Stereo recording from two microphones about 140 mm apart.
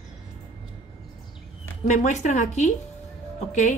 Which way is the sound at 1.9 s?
60° left (ahead or behind).